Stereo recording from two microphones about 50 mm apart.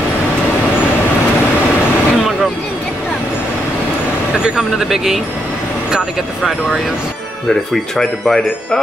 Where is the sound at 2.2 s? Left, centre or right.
Centre.